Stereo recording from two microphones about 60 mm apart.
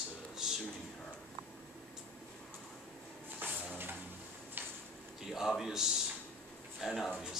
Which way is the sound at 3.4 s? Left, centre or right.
Right.